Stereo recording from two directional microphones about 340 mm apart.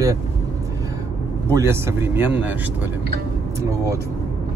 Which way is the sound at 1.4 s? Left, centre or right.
Centre.